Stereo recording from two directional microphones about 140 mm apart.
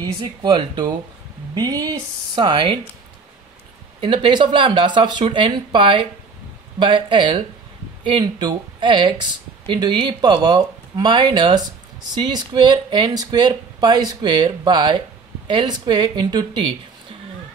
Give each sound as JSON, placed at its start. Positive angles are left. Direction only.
{"t": 0.0, "sound": "speech", "side_deg": -30}
{"t": 4.0, "sound": "speech", "side_deg": -35}